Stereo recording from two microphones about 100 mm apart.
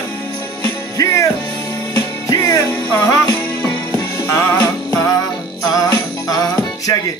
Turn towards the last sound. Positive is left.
turn(degrees=35)  # may be behind; listen again after turning